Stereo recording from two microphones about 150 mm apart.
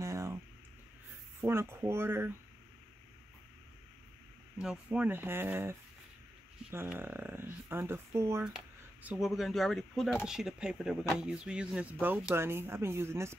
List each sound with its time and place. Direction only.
0.0 s a sound: 20° right (ahead or behind)
1.4 s speech: 15° right (ahead or behind)
4.6 s speech: 5° right (ahead or behind)
8.5 s speech: 5° right (ahead or behind)